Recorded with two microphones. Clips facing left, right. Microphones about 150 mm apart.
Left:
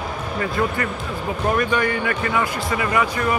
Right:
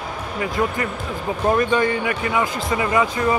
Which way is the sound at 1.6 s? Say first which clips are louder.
Right 2 dB; 25° right (ahead or behind).